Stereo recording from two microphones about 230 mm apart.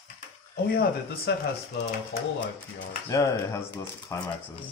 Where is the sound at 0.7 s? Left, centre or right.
Left.